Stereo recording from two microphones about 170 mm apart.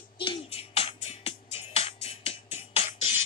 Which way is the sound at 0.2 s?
30° left (ahead or behind).